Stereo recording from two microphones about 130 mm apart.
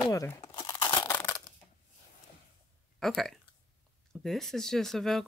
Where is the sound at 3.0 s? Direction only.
Centre (ahead or behind).